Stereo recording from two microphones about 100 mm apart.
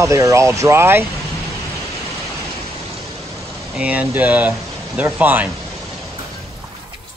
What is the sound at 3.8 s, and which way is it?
Speech, 15° right (ahead or behind).